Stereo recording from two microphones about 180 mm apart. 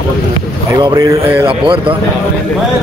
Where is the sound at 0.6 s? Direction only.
20° right (ahead or behind).